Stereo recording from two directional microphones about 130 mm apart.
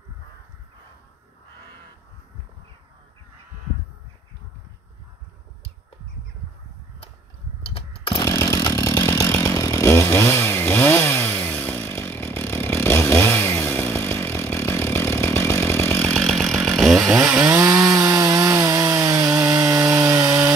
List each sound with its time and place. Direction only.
7.6 s chainsaw: 45° left (ahead or behind)
8.2 s chainsaw: 25° left (ahead or behind)
16.1 s chainsaw: 5° left (ahead or behind)
17.3 s chainsaw: 10° right (ahead or behind)
17.6 s chainsaw: 25° right (ahead or behind)